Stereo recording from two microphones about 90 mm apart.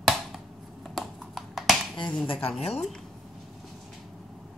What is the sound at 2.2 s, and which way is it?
Speech, 80° left.